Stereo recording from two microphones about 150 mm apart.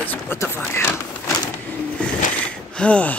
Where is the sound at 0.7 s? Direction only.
15° left (ahead or behind).